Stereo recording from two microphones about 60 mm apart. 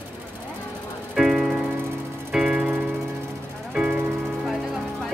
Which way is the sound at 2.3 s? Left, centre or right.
Centre.